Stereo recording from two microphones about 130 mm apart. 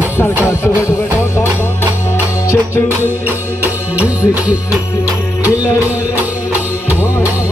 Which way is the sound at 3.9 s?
10° right (ahead or behind).